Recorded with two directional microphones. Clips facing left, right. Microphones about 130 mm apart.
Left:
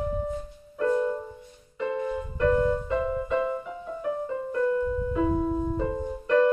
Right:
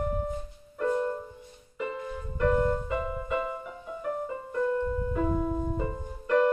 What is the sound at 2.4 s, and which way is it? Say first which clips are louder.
Music: left 2 dB; 5° right (ahead or behind).